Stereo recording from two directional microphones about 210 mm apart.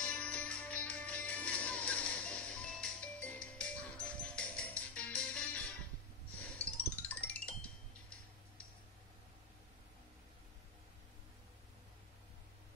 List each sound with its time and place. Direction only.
0.0 s music: 5° left (ahead or behind)